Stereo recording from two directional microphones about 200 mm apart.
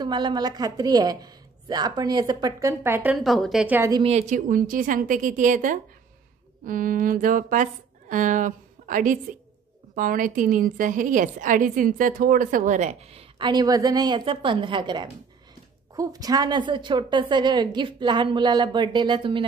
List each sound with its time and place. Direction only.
0.0 s a woman's voice: 20° right (ahead or behind)
3.9 s a woman's voice: 30° right (ahead or behind)